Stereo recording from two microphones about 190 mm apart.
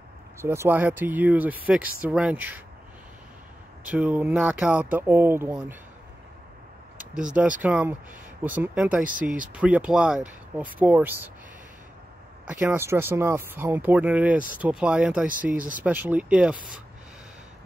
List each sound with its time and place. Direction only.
0.4 s speech: 15° right (ahead or behind)
3.8 s speech: 5° right (ahead or behind)
7.0 s speech: 5° right (ahead or behind)
9.0 s speech: 45° right (ahead or behind)
9.5 s speech: 5° right (ahead or behind)
12.4 s speech: 10° right (ahead or behind)